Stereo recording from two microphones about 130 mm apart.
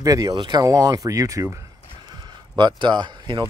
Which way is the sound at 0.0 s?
25° right (ahead or behind).